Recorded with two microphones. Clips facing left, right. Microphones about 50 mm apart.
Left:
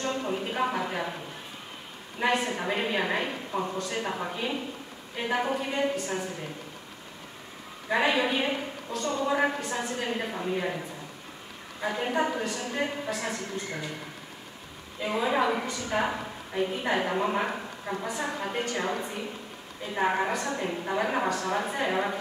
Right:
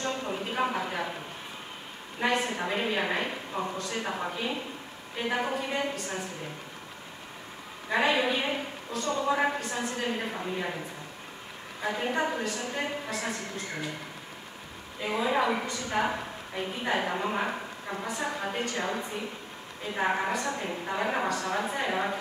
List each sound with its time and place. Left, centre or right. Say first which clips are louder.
0.1 s a sound: left 2 dB; centre
2.1 s a woman's voice: left 1 dB; centre
7.9 s a woman's voice: left 1 dB; centre
11.8 s a woman's voice: left 1 dB; centre
15.0 s a woman's voice: left 1 dB; centre